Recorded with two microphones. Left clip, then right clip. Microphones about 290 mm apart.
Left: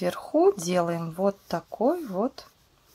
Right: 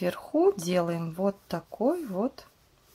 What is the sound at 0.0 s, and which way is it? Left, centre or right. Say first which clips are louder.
Speech: left 3 dB; centre.